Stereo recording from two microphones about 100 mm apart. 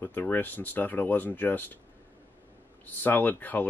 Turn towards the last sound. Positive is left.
turn(degrees=15)  # may be behind; listen again after turning